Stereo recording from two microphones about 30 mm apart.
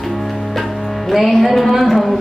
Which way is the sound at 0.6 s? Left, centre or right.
Centre.